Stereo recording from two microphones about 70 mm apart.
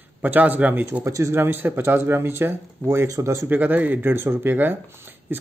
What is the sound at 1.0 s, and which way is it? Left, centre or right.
Speech, right.